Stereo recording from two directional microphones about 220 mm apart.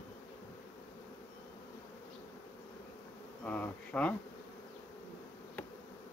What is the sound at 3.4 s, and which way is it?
Speech, 5° left (ahead or behind).